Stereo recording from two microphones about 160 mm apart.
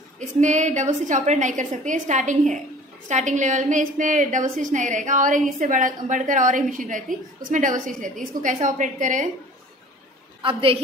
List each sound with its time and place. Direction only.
0.4 s a woman's voice: 50° right (ahead or behind)
10.4 s a woman's voice: 35° right (ahead or behind)